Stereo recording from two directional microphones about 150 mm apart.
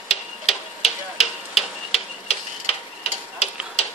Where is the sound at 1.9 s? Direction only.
45° left (ahead or behind).